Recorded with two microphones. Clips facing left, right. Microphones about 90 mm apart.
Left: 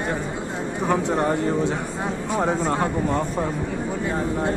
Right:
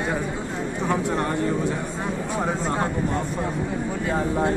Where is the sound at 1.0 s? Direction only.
25° left (ahead or behind).